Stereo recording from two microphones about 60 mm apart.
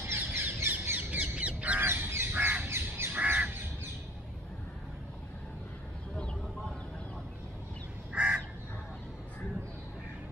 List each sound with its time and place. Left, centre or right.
0.0 s bird: right
0.9 s crow: right
1.9 s goose: right
2.3 s crow: right
3.3 s crow: right
8.1 s crow: centre